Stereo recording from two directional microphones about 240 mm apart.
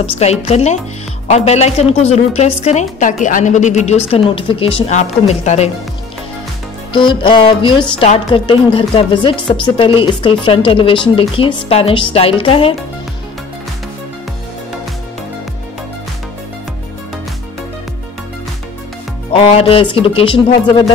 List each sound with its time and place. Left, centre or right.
0.0 s a woman's voice: left
6.9 s a woman's voice: centre
19.3 s a woman's voice: left